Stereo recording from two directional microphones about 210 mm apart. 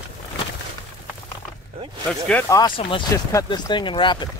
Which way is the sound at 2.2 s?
10° left (ahead or behind).